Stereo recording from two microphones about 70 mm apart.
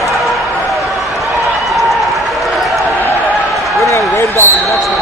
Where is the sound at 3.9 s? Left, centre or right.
Left.